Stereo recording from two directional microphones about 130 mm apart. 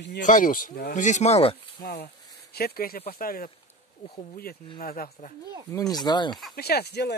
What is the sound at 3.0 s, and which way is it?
Speech, 90° left.